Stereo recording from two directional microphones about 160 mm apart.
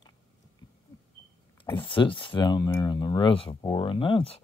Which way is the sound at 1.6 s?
35° left (ahead or behind).